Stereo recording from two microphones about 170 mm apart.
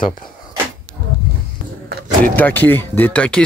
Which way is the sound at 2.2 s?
10° left (ahead or behind).